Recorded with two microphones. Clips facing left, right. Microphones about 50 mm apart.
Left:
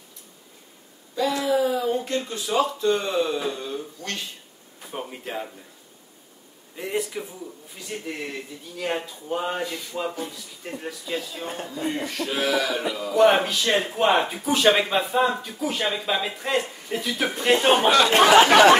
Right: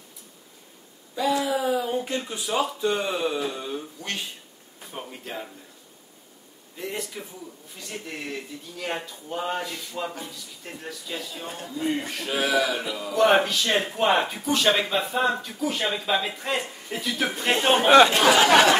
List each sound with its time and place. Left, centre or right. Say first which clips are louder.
1.1 s speech: left 2 dB; centre
4.9 s speech: left 4 dB; centre
6.8 s speech: left 5 dB; centre
8.1 s speech: even; centre
11.4 s speech: left 2 dB; left
11.9 s speech: even; centre
12.9 s speech: left 2 dB; centre
17.7 s speech: right 3 dB; right
18.1 s speech: left 3 dB; left